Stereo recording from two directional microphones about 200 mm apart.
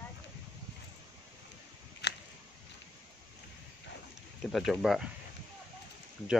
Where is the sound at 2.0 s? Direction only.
60° left (ahead or behind).